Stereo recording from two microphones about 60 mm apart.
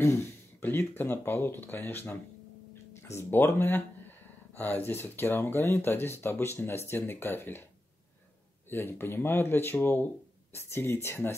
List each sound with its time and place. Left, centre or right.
0.0 s speech: left
8.6 s speech: left